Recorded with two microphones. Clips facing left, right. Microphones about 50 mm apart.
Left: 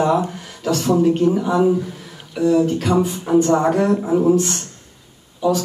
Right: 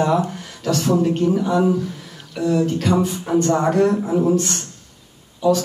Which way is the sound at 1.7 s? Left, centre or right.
Centre.